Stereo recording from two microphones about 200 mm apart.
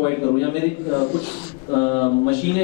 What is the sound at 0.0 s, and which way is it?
Speech, 20° left (ahead or behind).